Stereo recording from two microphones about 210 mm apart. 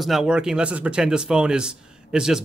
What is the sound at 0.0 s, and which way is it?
Speech, centre (ahead or behind).